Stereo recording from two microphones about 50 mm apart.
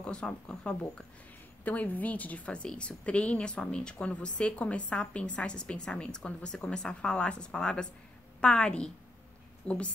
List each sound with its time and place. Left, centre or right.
0.0 s a woman's voice: left
1.6 s a woman's voice: left